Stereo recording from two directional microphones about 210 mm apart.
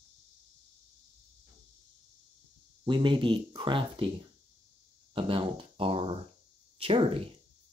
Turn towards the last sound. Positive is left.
turn(degrees=-25)  # may be behind; listen again after turning